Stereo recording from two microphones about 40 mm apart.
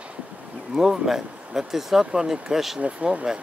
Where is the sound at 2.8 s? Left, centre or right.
Right.